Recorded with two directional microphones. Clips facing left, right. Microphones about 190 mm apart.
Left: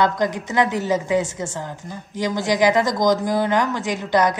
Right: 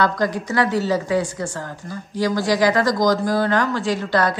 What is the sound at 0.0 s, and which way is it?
A woman's voice, 20° left (ahead or behind).